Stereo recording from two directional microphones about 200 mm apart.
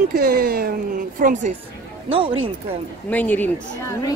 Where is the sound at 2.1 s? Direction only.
25° right (ahead or behind).